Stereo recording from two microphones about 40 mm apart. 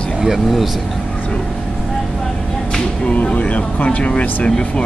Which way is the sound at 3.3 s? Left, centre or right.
Left.